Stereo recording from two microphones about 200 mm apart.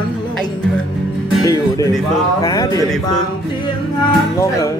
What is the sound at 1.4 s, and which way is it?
Speech, 20° left (ahead or behind).